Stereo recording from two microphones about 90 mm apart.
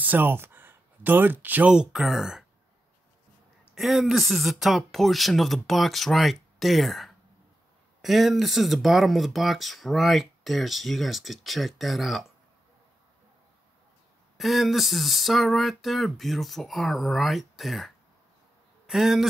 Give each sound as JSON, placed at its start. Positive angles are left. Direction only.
{"t": 0.0, "sound": "speech", "side_deg": -20}
{"t": 3.7, "sound": "speech", "side_deg": 0}
{"t": 14.3, "sound": "speech", "side_deg": 0}